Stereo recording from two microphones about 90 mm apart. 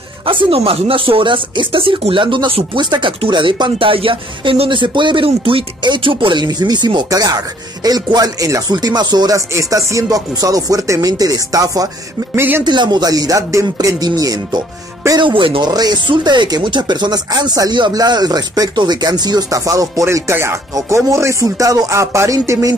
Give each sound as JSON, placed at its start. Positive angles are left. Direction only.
{"t": 0.3, "sound": "speech", "side_deg": -80}
{"t": 6.4, "sound": "speech", "side_deg": -55}
{"t": 7.1, "sound": "speech", "side_deg": -45}
{"t": 8.7, "sound": "speech", "side_deg": -50}
{"t": 9.5, "sound": "speech", "side_deg": -35}
{"t": 12.4, "sound": "speech", "side_deg": -25}
{"t": 12.6, "sound": "speech", "side_deg": -55}
{"t": 14.0, "sound": "speech", "side_deg": -45}
{"t": 15.1, "sound": "speech", "side_deg": -70}
{"t": 15.7, "sound": "speech", "side_deg": -50}